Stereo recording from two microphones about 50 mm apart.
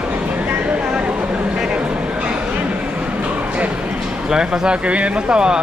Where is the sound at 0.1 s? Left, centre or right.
Right.